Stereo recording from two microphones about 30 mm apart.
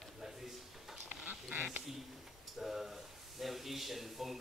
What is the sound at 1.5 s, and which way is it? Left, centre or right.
Duck, right.